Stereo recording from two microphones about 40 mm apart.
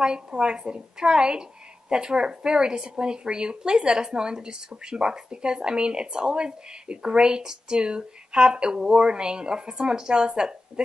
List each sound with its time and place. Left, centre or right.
0.0 s speech: right